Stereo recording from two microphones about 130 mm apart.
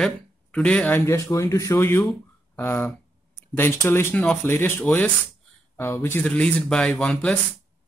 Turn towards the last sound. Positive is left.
turn(degrees=10)  # may be behind; listen again after turning